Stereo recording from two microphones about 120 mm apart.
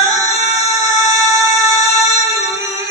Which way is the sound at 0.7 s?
25° right (ahead or behind).